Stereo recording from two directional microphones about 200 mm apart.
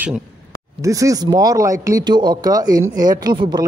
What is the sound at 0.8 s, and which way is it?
Speech, 15° right (ahead or behind).